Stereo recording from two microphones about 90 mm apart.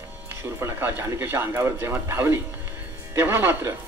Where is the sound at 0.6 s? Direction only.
25° right (ahead or behind).